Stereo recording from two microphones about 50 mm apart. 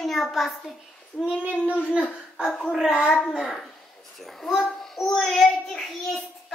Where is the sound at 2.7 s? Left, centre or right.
Centre.